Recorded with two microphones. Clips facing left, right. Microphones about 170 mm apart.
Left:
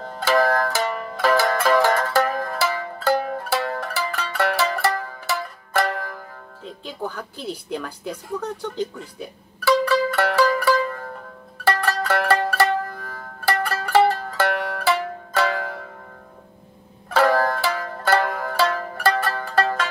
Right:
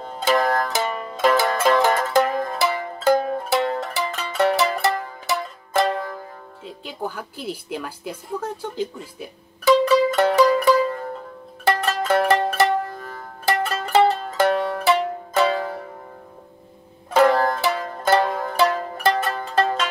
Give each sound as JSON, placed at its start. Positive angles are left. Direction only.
{"t": 0.0, "sound": "music", "side_deg": -20}
{"t": 6.6, "sound": "a woman's voice", "side_deg": -5}
{"t": 9.7, "sound": "music", "side_deg": -20}
{"t": 17.1, "sound": "music", "side_deg": -20}